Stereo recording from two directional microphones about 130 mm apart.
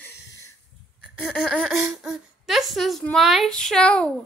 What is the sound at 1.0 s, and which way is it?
Speech, 5° left (ahead or behind).